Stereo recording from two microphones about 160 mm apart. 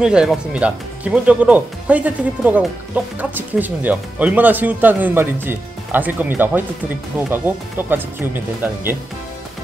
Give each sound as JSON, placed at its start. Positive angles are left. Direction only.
{"t": 0.0, "sound": "speech", "side_deg": -5}